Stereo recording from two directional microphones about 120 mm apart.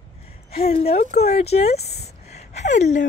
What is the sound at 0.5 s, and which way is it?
Speech, 55° left (ahead or behind).